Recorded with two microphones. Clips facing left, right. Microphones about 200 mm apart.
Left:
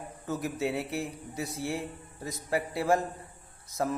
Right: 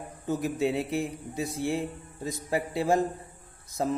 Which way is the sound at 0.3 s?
20° right (ahead or behind).